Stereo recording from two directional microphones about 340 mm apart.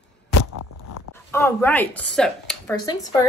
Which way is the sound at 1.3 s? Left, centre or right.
Centre.